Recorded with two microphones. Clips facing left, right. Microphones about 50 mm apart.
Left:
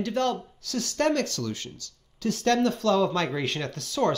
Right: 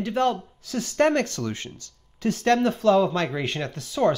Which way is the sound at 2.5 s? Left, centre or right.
Centre.